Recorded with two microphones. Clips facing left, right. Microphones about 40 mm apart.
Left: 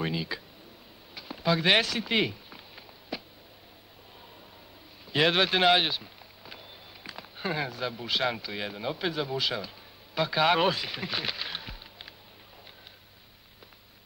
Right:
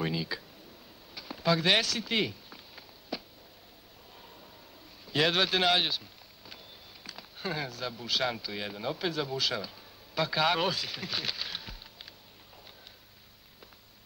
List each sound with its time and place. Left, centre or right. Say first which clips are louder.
0.0 s speech: left 1 dB; centre
1.1 s a sound: left 1 dB; centre
5.1 s speech: left 3 dB; centre